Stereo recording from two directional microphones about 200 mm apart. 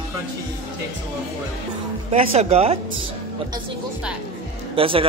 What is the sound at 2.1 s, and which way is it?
Speech, 30° right (ahead or behind).